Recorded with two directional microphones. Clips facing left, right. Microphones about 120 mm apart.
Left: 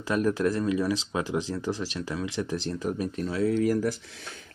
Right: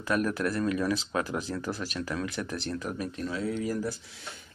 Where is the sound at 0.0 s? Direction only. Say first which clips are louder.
Left 3 dB; 30° left (ahead or behind).